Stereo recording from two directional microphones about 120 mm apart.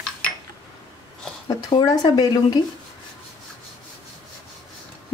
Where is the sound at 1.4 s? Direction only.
35° left (ahead or behind).